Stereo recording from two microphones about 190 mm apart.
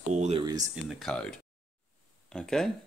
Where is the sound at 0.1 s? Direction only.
40° right (ahead or behind).